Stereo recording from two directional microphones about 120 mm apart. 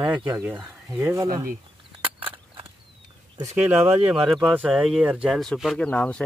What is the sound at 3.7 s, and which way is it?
Speech, 15° right (ahead or behind).